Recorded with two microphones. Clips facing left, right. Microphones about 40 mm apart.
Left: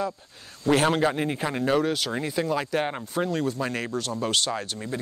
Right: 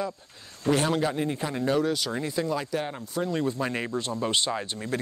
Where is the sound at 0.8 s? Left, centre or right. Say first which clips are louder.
Left 3 dB; left.